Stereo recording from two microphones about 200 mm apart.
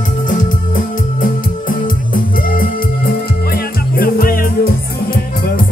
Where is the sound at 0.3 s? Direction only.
45° left (ahead or behind).